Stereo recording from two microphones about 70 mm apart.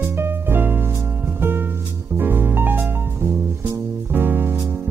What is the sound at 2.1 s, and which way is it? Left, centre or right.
Music, right.